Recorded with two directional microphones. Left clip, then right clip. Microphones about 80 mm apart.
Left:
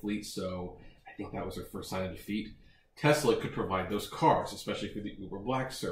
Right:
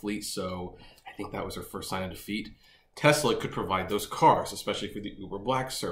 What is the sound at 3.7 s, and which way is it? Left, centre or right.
Speech, centre.